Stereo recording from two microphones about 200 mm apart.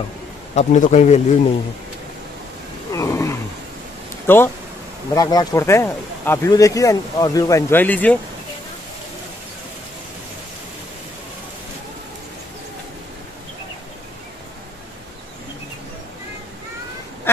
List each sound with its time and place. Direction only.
0.6 s speech: 35° left (ahead or behind)
2.9 s wild animals: 15° left (ahead or behind)
4.3 s speech: 10° left (ahead or behind)